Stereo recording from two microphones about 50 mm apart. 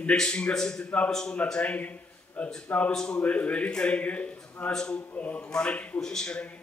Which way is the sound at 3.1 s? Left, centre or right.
Left.